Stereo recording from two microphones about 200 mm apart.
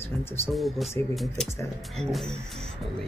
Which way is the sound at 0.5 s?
Centre (ahead or behind).